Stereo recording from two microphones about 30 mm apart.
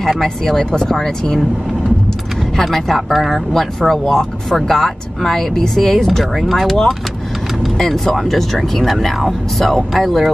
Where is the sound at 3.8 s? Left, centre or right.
Centre.